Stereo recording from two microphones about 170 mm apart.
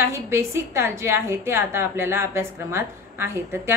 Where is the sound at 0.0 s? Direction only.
15° right (ahead or behind).